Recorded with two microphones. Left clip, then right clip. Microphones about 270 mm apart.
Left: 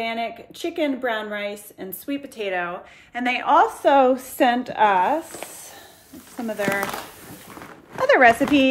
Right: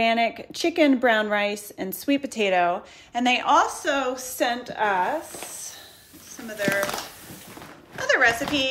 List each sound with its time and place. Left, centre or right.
0.0 s a woman's voice: right; by 5.1 s left
6.4 s a woman's voice: centre
8.0 s a woman's voice: centre